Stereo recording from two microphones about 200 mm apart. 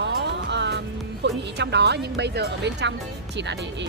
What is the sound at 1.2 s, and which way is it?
Speech, 60° right (ahead or behind).